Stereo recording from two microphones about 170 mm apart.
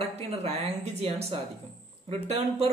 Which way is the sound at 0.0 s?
40° right (ahead or behind).